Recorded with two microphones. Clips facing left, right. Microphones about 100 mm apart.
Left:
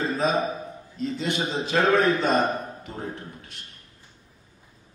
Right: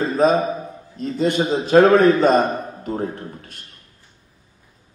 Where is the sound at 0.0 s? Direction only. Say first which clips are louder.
Right 7 dB; 45° right (ahead or behind).